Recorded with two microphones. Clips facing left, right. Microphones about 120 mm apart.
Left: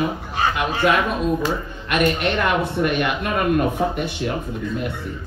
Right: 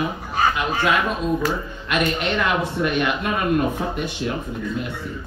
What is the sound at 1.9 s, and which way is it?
Speech, 50° left (ahead or behind).